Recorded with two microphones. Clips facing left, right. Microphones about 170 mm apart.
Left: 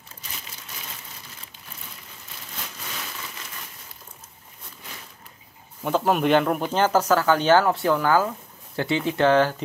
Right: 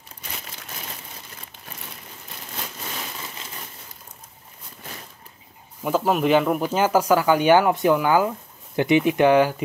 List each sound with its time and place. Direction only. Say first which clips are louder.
5.9 s speech: right 1 dB; 5° right (ahead or behind)